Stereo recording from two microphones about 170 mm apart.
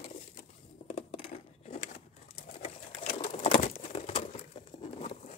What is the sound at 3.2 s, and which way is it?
Bird, 40° left (ahead or behind).